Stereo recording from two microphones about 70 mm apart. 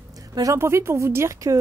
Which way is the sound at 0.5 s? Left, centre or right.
Right.